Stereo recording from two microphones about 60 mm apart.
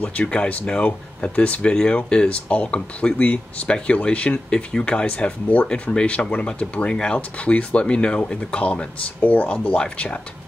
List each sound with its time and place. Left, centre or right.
0.0 s speech: left